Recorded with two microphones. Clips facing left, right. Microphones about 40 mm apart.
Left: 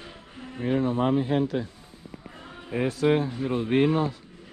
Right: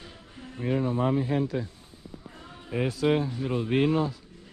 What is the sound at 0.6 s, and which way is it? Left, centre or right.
Speech, left.